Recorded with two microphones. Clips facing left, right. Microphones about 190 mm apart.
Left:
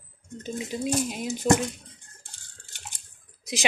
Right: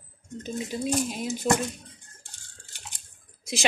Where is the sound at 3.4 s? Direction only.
15° left (ahead or behind).